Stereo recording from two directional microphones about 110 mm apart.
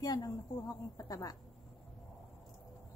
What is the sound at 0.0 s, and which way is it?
Speech, 35° left (ahead or behind).